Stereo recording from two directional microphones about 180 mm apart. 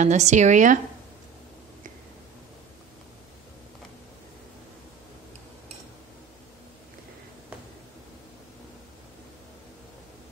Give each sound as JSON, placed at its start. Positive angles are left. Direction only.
{"t": 0.0, "sound": "a woman's voice", "side_deg": -40}